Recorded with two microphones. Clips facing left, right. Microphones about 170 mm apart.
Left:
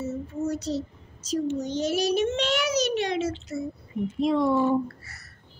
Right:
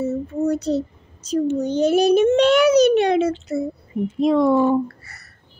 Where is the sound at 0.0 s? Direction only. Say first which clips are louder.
Right 8 dB; 60° right (ahead or behind).